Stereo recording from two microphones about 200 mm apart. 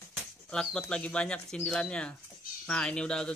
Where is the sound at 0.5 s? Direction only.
5° left (ahead or behind).